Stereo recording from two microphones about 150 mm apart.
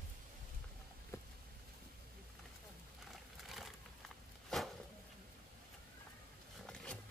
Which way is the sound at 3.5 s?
Centre (ahead or behind).